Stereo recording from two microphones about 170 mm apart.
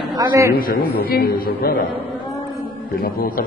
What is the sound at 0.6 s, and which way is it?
A man's voice, 55° left (ahead or behind).